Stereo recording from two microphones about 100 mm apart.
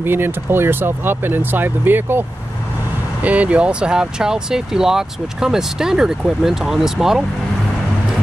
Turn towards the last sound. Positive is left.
turn(degrees=-5)  # may be behind; listen again after turning